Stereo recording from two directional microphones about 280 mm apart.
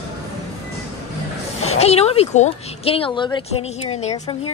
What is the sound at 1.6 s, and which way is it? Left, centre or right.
Speech, left.